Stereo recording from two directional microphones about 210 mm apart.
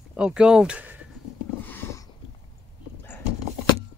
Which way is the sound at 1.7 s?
10° left (ahead or behind).